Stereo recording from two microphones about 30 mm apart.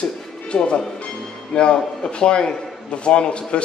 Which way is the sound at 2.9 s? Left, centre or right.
Left.